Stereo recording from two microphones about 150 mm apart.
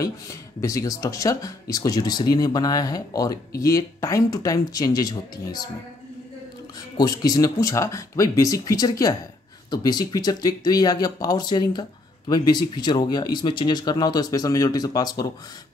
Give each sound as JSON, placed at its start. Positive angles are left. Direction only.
{"t": 0.0, "sound": "speech", "side_deg": 20}
{"t": 7.0, "sound": "speech", "side_deg": 25}